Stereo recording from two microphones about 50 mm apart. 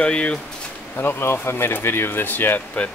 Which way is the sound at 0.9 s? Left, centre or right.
Left.